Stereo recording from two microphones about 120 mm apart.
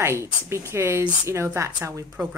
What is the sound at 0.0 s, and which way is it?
Speech, 20° right (ahead or behind).